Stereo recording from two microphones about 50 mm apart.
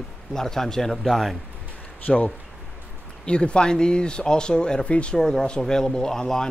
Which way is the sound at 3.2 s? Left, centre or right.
Left.